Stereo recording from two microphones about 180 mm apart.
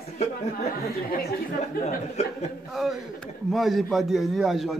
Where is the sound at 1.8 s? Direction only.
40° left (ahead or behind).